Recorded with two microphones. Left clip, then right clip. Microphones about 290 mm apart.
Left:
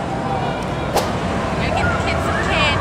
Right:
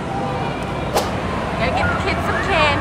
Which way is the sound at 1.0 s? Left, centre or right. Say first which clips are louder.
Left 1 dB; centre.